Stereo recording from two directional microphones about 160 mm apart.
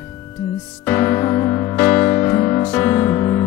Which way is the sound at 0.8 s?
15° left (ahead or behind).